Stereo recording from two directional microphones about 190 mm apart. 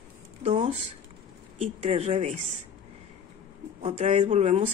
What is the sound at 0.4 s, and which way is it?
Speech, 35° right (ahead or behind).